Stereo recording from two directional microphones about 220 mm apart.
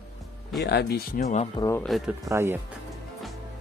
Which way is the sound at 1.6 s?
10° left (ahead or behind).